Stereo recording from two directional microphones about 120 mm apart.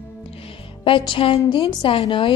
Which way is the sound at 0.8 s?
45° left (ahead or behind).